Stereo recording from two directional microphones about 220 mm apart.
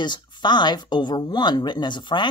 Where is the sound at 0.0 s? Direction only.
20° left (ahead or behind).